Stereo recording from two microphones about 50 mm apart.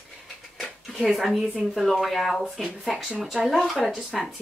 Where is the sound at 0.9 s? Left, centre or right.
Centre.